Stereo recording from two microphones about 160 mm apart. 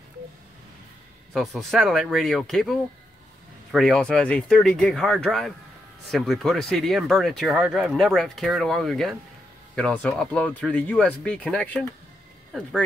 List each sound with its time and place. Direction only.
1.3 s speech: centre (ahead or behind)